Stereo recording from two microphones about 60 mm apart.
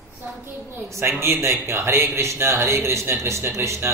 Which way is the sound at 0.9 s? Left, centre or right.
Right.